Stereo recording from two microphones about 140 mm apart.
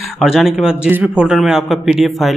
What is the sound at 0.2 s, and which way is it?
A man's voice, centre (ahead or behind).